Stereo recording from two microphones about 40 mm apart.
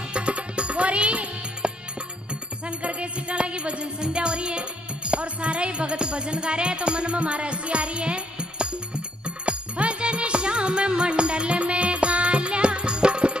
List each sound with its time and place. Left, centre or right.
0.1 s music: right